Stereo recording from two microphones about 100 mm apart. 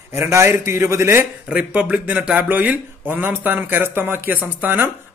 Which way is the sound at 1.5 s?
10° right (ahead or behind).